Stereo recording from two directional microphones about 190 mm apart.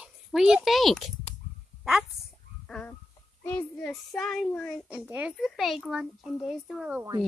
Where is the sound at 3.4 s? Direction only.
5° left (ahead or behind).